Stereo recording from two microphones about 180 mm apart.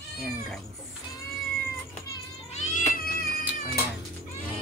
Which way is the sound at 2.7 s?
45° left (ahead or behind).